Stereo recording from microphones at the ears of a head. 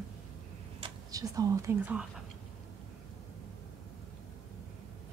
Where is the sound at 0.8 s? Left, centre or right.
Right.